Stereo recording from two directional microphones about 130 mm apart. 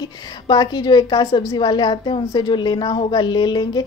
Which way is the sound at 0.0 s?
35° left (ahead or behind).